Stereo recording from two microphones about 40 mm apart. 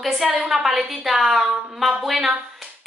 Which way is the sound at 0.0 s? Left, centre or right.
Centre.